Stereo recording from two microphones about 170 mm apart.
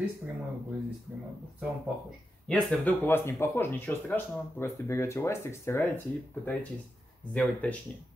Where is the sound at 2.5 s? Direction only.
10° left (ahead or behind).